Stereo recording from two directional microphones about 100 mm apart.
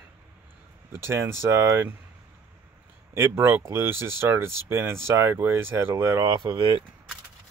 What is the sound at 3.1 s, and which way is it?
Speech, 25° right (ahead or behind).